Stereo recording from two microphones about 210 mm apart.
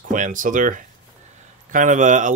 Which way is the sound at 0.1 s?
40° right (ahead or behind).